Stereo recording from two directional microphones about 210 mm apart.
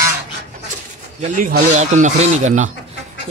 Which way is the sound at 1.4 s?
35° right (ahead or behind).